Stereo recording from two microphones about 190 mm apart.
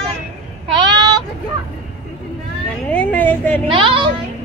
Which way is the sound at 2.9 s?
10° left (ahead or behind).